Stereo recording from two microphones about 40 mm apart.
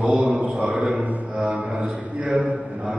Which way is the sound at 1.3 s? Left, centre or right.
Right.